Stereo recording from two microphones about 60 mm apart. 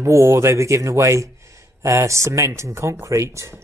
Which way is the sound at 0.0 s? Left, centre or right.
Right.